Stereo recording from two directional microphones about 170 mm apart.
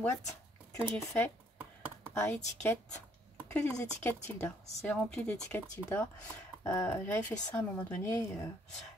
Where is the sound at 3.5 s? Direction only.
10° left (ahead or behind).